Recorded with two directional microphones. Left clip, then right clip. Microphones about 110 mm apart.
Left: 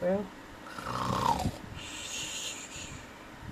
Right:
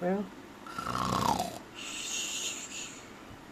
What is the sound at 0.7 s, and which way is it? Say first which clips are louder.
Dog: right 1 dB; 35° right (ahead or behind).